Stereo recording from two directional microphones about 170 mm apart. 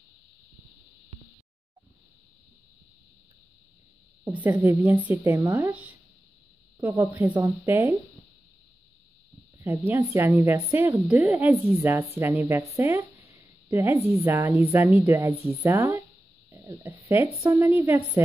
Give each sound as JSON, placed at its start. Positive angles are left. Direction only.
{"t": 4.2, "sound": "a woman's voice", "side_deg": -10}
{"t": 9.6, "sound": "a woman's voice", "side_deg": -15}